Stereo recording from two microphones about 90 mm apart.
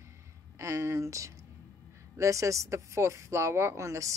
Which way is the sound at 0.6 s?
35° right (ahead or behind).